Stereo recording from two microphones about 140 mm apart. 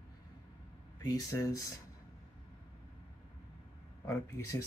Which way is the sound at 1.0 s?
25° left (ahead or behind).